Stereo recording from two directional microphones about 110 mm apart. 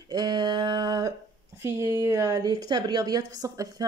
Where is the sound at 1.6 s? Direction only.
25° right (ahead or behind).